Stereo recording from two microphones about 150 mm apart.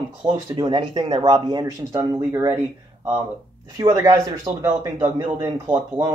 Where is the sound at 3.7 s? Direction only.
25° right (ahead or behind).